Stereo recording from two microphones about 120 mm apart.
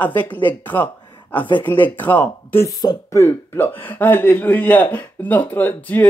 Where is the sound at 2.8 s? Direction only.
35° left (ahead or behind).